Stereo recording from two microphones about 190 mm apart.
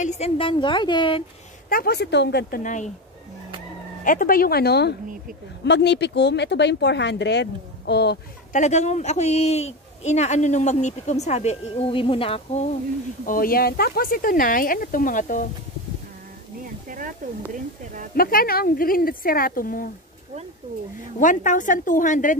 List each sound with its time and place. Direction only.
0.0 s a woman's voice: 35° left (ahead or behind)
1.7 s speech: 55° left (ahead or behind)
2.6 s speech: 40° left (ahead or behind)
4.0 s speech: 45° left (ahead or behind)
8.5 s speech: 40° left (ahead or behind)
13.2 s speech: 45° left (ahead or behind)
18.1 s speech: 50° left (ahead or behind)
21.2 s speech: 45° left (ahead or behind)